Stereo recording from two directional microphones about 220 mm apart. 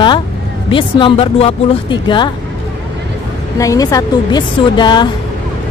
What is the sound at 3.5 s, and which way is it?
Speech, 15° left (ahead or behind).